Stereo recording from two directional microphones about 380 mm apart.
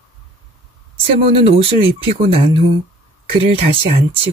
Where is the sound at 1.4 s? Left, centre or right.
Centre.